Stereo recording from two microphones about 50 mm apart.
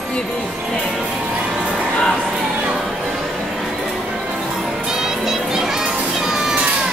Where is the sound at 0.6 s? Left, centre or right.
Centre.